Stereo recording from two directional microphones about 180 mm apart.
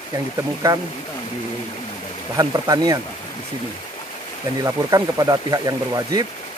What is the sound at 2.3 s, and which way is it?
Speech, 20° right (ahead or behind).